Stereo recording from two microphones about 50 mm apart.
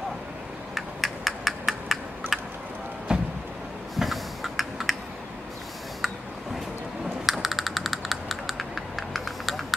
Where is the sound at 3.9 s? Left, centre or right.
Centre.